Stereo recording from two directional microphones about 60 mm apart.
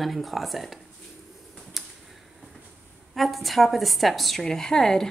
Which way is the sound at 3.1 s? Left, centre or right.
Centre.